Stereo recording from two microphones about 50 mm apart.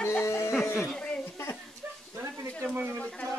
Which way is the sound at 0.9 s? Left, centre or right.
Centre.